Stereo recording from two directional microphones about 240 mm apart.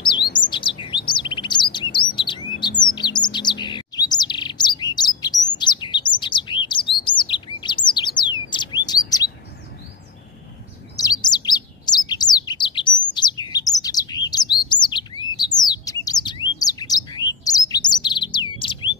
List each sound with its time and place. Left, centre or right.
0.5 s chirp: left
2.8 s bird: centre
5.6 s chirp: centre
11.0 s bird: centre